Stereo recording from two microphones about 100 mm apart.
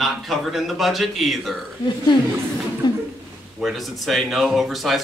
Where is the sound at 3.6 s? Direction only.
Centre (ahead or behind).